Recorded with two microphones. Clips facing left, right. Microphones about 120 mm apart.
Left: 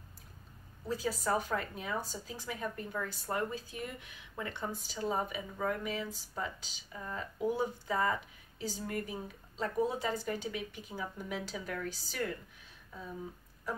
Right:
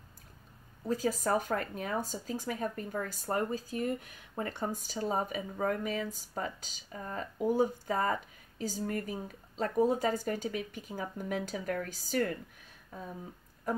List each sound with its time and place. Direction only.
0.8 s speech: 45° right (ahead or behind)